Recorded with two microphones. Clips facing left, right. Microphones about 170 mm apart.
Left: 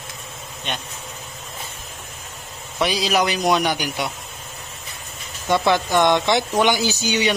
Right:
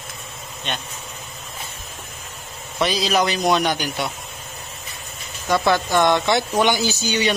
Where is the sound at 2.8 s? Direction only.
10° left (ahead or behind).